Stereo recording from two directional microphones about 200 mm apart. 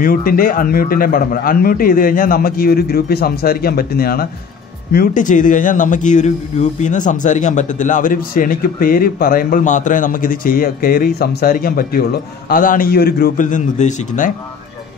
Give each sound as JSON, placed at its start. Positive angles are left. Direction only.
{"t": 0.0, "sound": "a man's voice", "side_deg": 45}